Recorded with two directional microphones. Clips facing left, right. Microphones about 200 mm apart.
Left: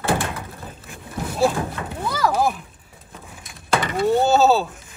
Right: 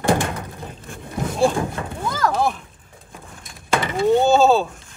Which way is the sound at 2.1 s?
10° left (ahead or behind).